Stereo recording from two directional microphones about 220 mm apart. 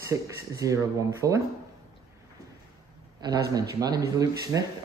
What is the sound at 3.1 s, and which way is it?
Speech, 20° right (ahead or behind).